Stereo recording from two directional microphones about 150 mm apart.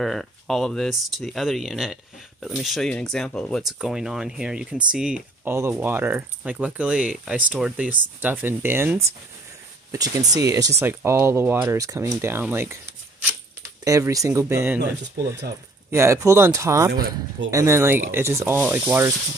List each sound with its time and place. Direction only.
0.0 s speech: centre (ahead or behind); by 14.8 s 15° right (ahead or behind)
15.9 s speech: 20° right (ahead or behind)